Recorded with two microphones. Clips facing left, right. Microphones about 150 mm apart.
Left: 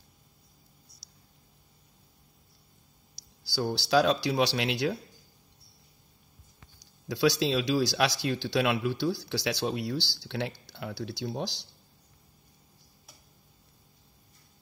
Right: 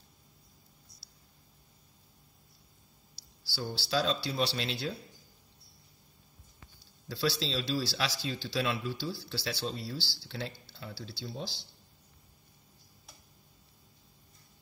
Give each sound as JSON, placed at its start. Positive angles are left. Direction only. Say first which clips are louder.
{"t": 3.2, "sound": "speech", "louder": "left 8 dB", "side_deg": 80}
{"t": 7.1, "sound": "speech", "louder": "left 7 dB", "side_deg": 70}